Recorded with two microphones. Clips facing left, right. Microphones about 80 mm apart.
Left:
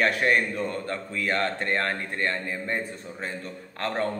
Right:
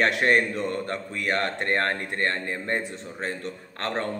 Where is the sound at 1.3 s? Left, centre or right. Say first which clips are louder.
Right 1 dB; right.